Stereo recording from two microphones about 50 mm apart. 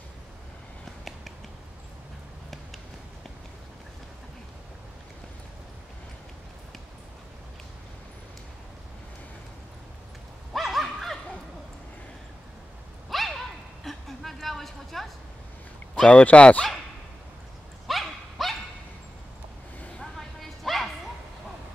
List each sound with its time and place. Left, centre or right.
10.5 s dog: centre
13.1 s a sound: centre
16.1 s speech: left
17.8 s dog: centre
20.0 s bow-wow: centre